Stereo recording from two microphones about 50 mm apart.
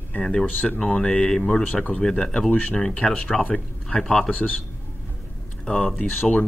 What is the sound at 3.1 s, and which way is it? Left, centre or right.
Speech, left.